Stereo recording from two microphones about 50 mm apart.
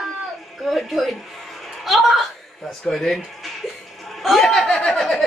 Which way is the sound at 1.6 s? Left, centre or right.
Centre.